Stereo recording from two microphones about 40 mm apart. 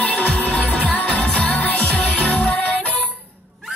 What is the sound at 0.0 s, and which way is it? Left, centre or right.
Music, left.